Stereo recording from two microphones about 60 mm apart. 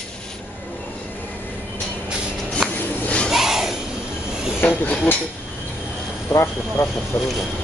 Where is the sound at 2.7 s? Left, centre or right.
Left.